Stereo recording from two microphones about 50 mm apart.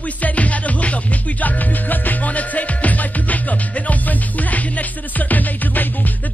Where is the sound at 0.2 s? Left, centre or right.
Left.